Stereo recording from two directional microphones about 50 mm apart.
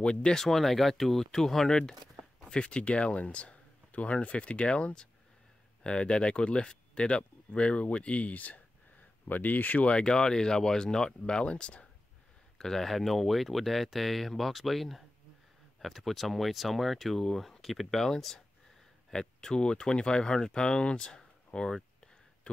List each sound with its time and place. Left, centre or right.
0.0 s speech: centre
2.5 s speech: left
9.8 s speech: centre
12.5 s speech: centre
21.5 s a sound: centre